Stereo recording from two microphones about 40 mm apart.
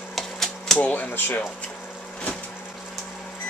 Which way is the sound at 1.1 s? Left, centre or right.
Left.